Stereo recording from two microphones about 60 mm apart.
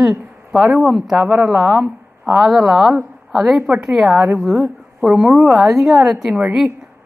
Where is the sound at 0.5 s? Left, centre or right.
Centre.